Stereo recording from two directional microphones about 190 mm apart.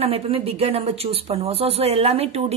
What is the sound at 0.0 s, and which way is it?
Speech, 30° right (ahead or behind).